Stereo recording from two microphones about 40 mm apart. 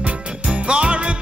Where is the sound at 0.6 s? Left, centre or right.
Right.